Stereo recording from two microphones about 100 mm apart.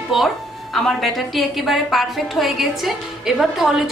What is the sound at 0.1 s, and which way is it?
A woman's voice, centre (ahead or behind).